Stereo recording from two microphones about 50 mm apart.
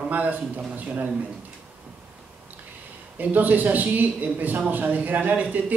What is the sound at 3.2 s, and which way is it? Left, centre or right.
Speech, right.